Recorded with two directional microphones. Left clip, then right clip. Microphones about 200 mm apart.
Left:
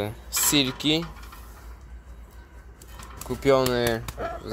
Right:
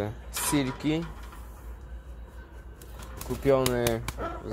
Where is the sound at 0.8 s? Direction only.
15° left (ahead or behind).